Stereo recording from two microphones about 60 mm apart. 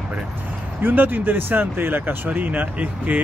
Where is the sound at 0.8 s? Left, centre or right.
Right.